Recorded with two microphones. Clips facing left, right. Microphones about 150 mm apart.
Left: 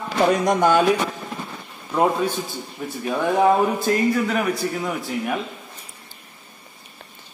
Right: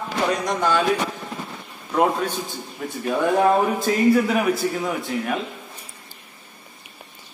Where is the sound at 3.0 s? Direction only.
5° left (ahead or behind).